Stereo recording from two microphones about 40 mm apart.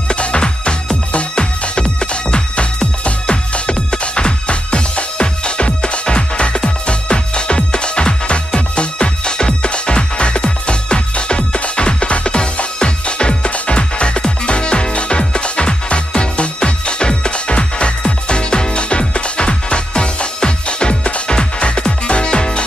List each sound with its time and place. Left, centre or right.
0.1 s music: left